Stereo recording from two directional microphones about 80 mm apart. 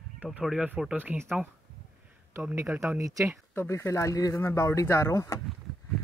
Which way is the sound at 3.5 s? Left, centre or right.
Left.